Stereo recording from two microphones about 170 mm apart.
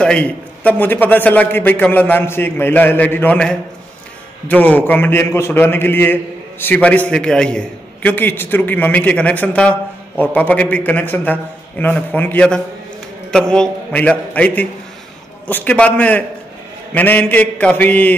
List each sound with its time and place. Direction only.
0.0 s a man's voice: 5° left (ahead or behind)